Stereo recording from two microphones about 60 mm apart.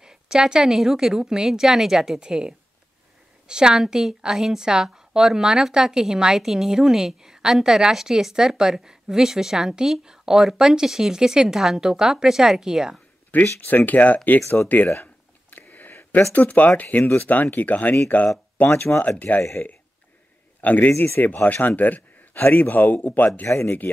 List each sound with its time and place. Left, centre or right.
0.0 s a woman's voice: centre
13.6 s a man's voice: left
15.5 s a sound: left
16.3 s a man's voice: left
18.6 s a man's voice: left
20.6 s a man's voice: left
20.9 s speech: left
21.2 s a man's voice: left